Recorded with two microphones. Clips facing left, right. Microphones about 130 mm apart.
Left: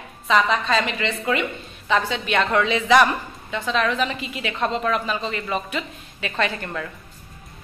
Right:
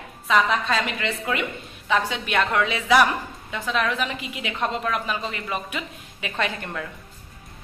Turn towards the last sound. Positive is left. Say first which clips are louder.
# left 2 dB
turn(degrees=-5)  # may be behind; listen again after turning